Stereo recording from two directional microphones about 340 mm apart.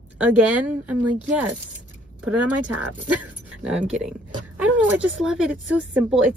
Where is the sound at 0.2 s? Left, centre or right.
Centre.